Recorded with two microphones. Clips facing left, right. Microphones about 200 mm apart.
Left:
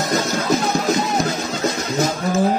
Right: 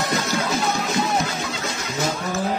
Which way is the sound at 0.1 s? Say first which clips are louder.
Left 4 dB; 40° left (ahead or behind).